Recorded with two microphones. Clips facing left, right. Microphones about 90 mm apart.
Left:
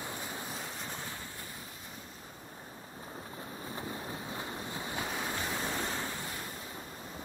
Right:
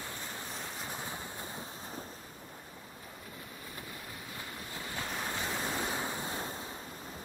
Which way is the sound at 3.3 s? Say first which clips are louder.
Left 6 dB; 30° left (ahead or behind).